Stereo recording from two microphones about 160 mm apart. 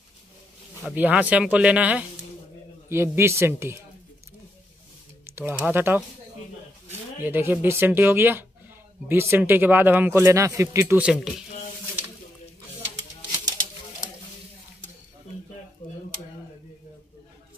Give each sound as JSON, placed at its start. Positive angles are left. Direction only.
{"t": 0.9, "sound": "speech", "side_deg": -10}
{"t": 5.2, "sound": "speech", "side_deg": -15}
{"t": 7.2, "sound": "speech", "side_deg": -15}
{"t": 11.0, "sound": "speech", "side_deg": -5}